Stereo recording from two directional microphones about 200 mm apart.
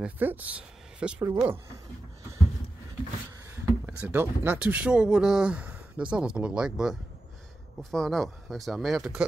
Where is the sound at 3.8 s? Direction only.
10° right (ahead or behind).